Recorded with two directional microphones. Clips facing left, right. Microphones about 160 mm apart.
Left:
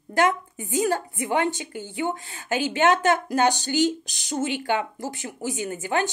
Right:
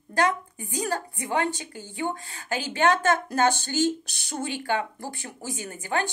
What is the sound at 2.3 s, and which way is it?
Speech, 35° right (ahead or behind).